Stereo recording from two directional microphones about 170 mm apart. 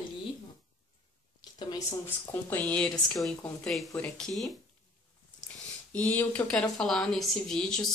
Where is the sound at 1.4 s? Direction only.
25° left (ahead or behind).